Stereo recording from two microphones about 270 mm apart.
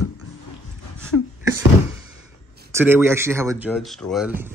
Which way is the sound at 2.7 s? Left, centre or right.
Centre.